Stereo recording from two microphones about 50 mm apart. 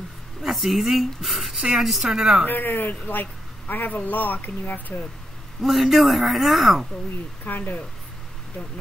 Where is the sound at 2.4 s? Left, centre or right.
Left.